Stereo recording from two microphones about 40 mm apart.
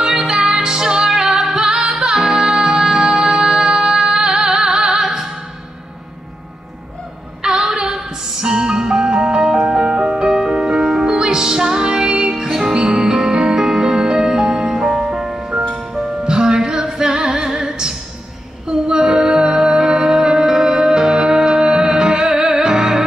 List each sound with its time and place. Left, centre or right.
0.0 s music: centre
7.4 s a sound: centre
8.0 s music: centre
12.4 s music: centre
12.7 s music: centre